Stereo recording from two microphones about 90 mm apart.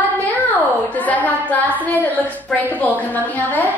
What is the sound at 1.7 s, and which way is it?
A woman's voice, 20° right (ahead or behind).